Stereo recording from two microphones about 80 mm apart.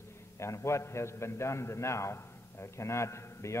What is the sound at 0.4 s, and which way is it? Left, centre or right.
A man's voice, left.